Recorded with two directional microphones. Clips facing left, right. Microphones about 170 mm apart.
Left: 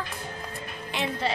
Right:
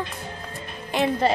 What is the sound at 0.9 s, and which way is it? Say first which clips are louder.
Speech: right 8 dB; 45° right (ahead or behind).